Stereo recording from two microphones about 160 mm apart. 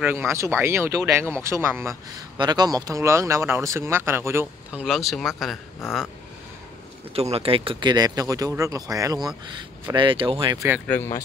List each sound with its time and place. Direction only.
0.0 s speech: 15° right (ahead or behind)
4.8 s speech: centre (ahead or behind)
7.2 s speech: 40° right (ahead or behind); by 9.3 s 20° right (ahead or behind)
9.9 s speech: 30° right (ahead or behind)